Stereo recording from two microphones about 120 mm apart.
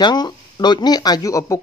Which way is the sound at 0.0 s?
35° left (ahead or behind).